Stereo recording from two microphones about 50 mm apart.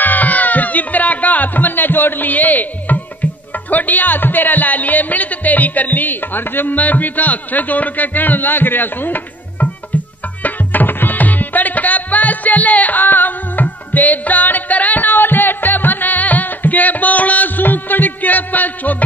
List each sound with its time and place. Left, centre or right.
0.0 s music: left
3.7 s speech: left
10.4 s music: left